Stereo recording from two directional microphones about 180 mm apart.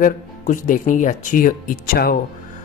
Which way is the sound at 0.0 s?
45° left (ahead or behind).